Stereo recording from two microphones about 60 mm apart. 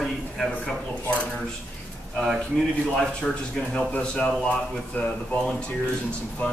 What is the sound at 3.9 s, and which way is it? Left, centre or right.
Speech, centre.